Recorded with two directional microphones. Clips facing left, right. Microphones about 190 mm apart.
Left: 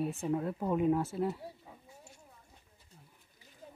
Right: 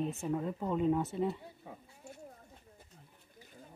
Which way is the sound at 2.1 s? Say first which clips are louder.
Right 8 dB; 55° right (ahead or behind).